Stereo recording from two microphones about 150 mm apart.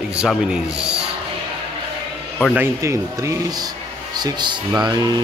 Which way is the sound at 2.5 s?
15° right (ahead or behind).